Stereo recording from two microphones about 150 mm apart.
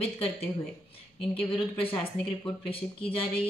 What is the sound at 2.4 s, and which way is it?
A woman's voice, 35° left (ahead or behind).